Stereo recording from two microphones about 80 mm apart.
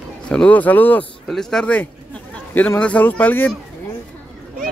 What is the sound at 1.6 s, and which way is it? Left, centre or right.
Speech, centre.